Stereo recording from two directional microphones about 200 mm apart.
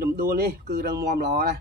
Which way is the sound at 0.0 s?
50° right (ahead or behind).